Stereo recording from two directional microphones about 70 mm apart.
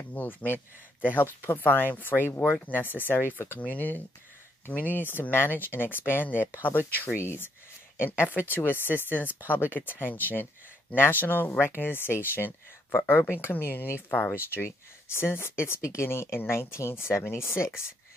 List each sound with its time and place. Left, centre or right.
0.1 s speech: left